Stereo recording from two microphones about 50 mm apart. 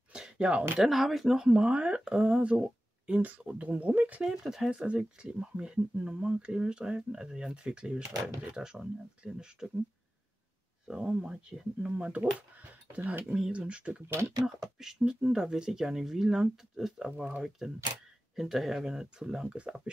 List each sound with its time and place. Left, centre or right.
0.1 s a sound: centre
0.7 s speech: centre
1.5 s speech: right
4.2 s speech: centre
4.6 s speech: right
10.9 s speech: centre
13.2 s speech: centre
13.5 s speech: right
14.6 s speech: centre